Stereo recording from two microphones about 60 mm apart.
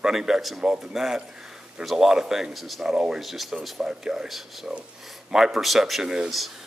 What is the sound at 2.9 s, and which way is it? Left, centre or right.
Speech, centre.